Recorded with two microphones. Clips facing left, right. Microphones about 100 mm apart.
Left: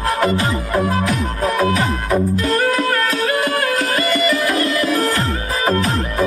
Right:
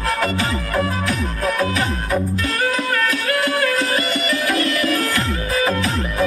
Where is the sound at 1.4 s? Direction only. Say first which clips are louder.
Left 3 dB; 35° left (ahead or behind).